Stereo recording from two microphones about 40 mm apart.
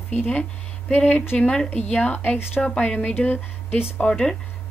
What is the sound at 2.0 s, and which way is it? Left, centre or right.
A woman's voice, left.